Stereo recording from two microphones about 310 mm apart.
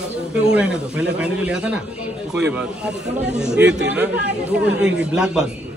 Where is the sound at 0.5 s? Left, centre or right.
Centre.